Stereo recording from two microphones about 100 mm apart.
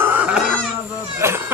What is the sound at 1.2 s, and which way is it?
Speech, 25° right (ahead or behind).